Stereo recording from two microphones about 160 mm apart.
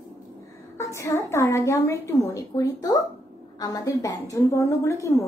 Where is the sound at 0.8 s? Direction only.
20° left (ahead or behind).